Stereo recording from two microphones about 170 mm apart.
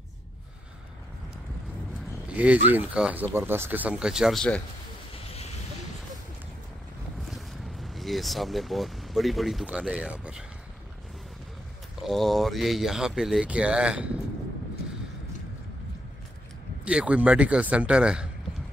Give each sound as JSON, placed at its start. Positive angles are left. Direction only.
{"t": 2.2, "sound": "speech", "side_deg": -10}
{"t": 5.1, "sound": "a sound", "side_deg": 35}
{"t": 7.2, "sound": "speech", "side_deg": 0}
{"t": 12.0, "sound": "speech", "side_deg": 0}
{"t": 16.8, "sound": "speech", "side_deg": -5}